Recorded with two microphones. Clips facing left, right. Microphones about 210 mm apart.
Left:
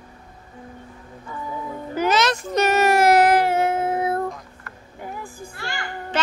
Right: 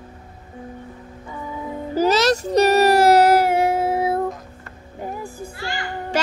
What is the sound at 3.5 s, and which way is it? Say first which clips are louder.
Child singing: right 2 dB; 10° right (ahead or behind).